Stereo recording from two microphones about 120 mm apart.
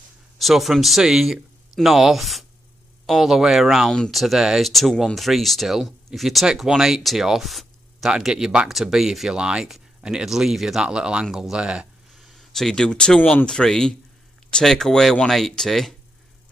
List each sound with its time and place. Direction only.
0.4 s speech: centre (ahead or behind)